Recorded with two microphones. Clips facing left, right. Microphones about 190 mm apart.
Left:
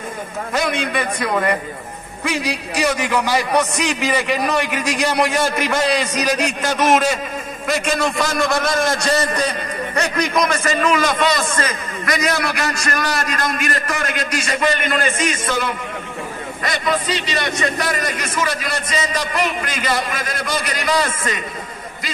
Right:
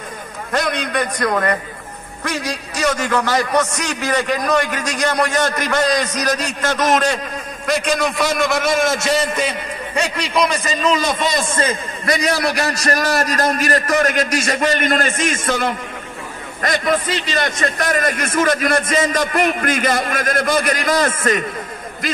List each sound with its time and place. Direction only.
0.5 s a man's voice: 5° left (ahead or behind)
10.5 s a man's voice: 20° right (ahead or behind); by 21.5 s 50° right (ahead or behind)